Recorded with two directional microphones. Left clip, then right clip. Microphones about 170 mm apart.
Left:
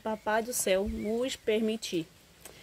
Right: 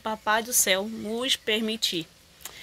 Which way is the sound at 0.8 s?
15° right (ahead or behind).